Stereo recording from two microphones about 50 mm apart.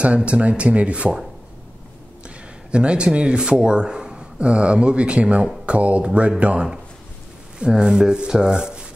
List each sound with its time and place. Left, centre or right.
0.0 s speech: right
2.2 s speech: right
7.5 s rub: centre